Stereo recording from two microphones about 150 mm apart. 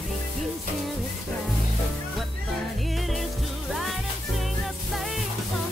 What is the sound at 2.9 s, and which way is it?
Music, centre (ahead or behind).